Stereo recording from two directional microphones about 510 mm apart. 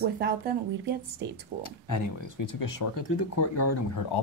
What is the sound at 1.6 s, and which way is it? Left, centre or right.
Speech, left.